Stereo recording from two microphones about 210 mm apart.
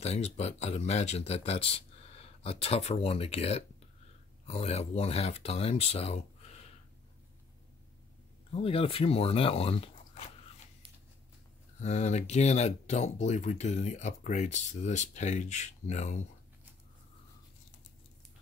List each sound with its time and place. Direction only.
0.0 s speech: 30° left (ahead or behind)
8.5 s speech: 25° left (ahead or behind)
11.8 s speech: 35° left (ahead or behind)